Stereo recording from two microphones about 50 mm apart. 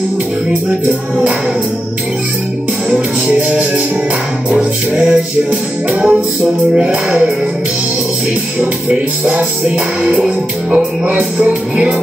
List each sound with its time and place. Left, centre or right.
0.7 s music: centre
3.3 s music: right
8.9 s music: right
10.0 s music: right